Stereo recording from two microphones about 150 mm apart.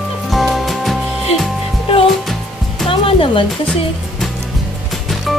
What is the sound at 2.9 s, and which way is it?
Music, 35° left (ahead or behind).